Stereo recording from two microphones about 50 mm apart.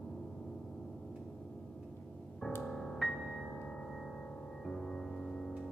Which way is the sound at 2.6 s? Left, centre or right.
Centre.